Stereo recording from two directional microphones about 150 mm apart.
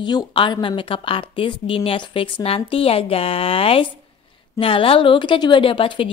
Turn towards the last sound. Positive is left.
turn(degrees=35)  # may be behind; listen again after turning